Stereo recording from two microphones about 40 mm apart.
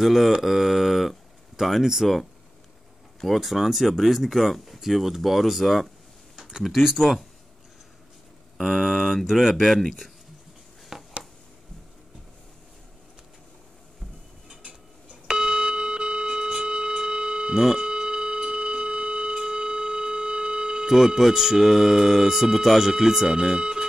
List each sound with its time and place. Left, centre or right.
0.0 s speech: centre
3.3 s speech: centre
8.5 s speech: centre
10.9 s a sound: centre
14.5 s cutlery: right
15.2 s a sound: centre
20.9 s speech: centre